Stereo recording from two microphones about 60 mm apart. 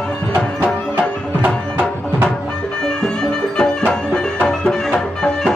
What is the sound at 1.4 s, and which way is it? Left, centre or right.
Music, right.